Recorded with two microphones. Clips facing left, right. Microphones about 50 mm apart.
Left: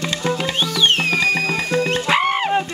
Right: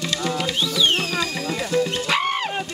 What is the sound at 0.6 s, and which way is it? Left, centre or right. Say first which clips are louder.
Music: left 3 dB; left.